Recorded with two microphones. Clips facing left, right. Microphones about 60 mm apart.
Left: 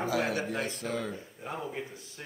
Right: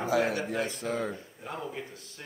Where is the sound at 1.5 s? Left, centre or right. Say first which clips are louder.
Even; centre.